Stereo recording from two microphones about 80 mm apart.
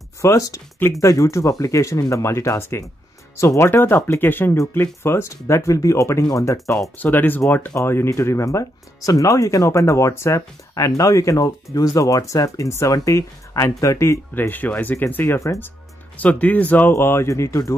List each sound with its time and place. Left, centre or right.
0.2 s speech: left
7.0 s speech: left
14.5 s speech: left
15.2 s speech: left
16.2 s speech: centre
16.9 s speech: left